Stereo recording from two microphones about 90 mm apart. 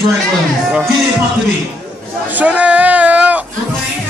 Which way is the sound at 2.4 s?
15° right (ahead or behind).